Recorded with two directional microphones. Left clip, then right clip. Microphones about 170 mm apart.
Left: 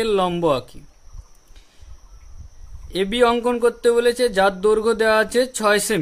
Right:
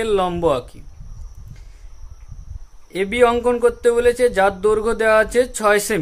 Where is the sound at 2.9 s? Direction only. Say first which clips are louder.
Right 2 dB; 20° left (ahead or behind).